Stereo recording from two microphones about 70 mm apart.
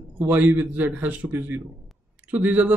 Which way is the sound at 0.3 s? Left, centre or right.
Right.